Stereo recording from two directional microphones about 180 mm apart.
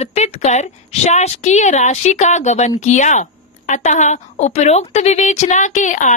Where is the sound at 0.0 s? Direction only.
35° left (ahead or behind).